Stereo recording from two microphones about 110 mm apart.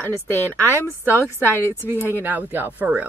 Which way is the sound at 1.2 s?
20° left (ahead or behind).